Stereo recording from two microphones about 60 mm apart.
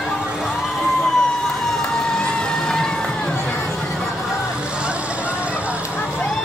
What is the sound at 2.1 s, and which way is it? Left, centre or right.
Music, centre.